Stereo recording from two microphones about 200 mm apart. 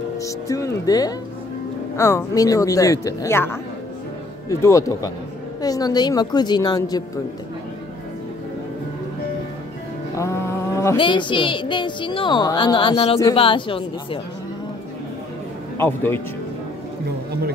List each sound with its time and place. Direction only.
0.2 s a woman's voice: 15° left (ahead or behind)
10.1 s a sound: 15° left (ahead or behind)
11.0 s a woman's voice: 25° left (ahead or behind)
15.8 s speech: 10° left (ahead or behind)